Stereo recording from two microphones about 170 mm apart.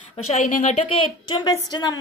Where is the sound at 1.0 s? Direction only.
25° left (ahead or behind).